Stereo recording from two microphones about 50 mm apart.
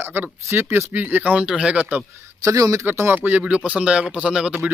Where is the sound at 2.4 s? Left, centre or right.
Right.